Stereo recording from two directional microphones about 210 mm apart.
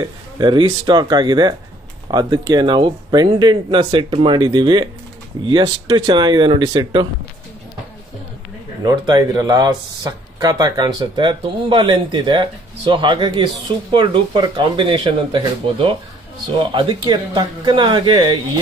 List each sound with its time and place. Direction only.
0.4 s speech: 20° right (ahead or behind)
8.8 s speech: 20° right (ahead or behind)